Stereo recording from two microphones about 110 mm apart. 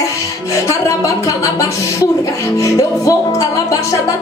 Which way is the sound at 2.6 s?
30° left (ahead or behind).